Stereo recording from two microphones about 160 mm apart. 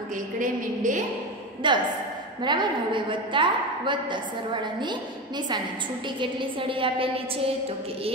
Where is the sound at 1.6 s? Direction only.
30° right (ahead or behind).